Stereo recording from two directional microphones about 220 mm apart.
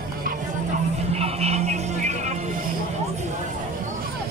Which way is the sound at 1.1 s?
30° right (ahead or behind).